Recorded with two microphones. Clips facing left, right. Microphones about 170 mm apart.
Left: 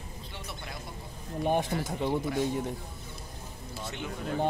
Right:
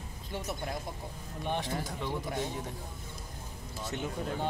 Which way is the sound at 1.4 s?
50° left (ahead or behind).